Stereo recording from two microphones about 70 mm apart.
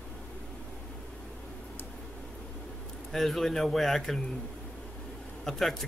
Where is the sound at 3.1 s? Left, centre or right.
Centre.